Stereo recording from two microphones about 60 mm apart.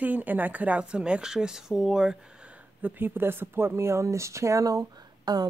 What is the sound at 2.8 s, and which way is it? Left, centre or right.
Speech, right.